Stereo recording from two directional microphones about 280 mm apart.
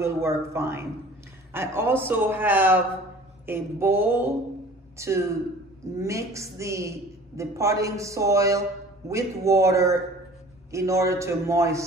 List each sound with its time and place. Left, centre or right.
0.0 s a woman's voice: centre